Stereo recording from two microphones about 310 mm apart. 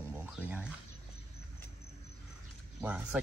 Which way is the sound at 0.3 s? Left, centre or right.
Centre.